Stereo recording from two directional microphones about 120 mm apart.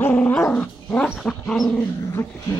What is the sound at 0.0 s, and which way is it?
Dog, 10° left (ahead or behind).